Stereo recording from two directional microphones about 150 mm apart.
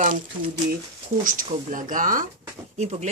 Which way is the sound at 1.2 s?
65° right (ahead or behind).